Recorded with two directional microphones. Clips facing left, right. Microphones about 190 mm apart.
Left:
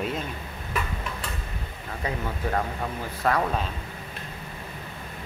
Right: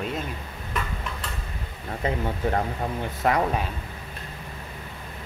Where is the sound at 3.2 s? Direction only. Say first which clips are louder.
Right 1 dB; 20° right (ahead or behind).